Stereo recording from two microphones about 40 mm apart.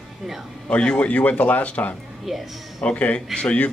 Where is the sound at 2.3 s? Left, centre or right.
Centre.